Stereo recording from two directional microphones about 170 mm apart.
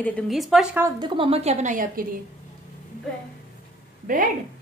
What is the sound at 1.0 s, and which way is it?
A woman's voice, 35° right (ahead or behind).